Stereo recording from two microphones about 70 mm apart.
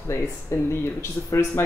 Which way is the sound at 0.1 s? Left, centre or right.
Left.